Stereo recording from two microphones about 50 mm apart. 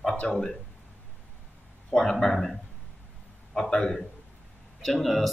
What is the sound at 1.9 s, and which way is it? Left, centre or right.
Speech, centre.